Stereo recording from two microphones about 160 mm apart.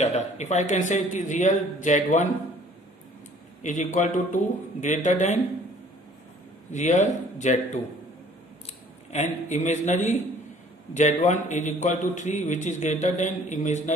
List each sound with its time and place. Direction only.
0.0 s a man's voice: 45° left (ahead or behind)
3.6 s a man's voice: 50° left (ahead or behind)
6.7 s a man's voice: 50° left (ahead or behind)
9.1 s a man's voice: 45° left (ahead or behind)